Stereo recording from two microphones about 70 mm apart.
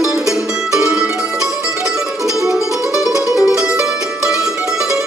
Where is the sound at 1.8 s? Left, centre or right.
Centre.